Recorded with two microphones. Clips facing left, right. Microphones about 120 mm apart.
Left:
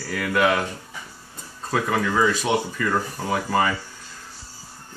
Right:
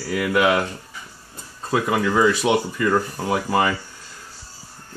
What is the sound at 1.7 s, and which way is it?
Speech, 10° right (ahead or behind).